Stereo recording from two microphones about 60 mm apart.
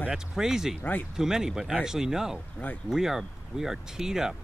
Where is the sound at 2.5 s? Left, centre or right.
Left.